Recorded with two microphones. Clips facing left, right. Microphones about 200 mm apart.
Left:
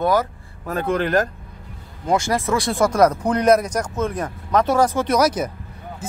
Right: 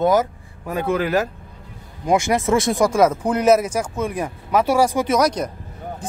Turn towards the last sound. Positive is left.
turn(degrees=5)  # may be behind; listen again after turning